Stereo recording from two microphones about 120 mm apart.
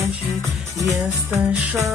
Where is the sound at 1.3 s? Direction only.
25° right (ahead or behind).